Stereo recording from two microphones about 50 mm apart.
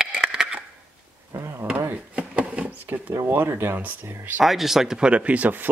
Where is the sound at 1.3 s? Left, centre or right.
Right.